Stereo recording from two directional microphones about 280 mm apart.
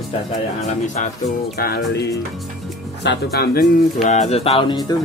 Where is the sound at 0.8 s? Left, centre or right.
Left.